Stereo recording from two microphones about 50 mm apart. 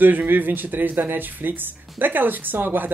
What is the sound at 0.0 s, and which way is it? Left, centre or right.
A woman's voice, right.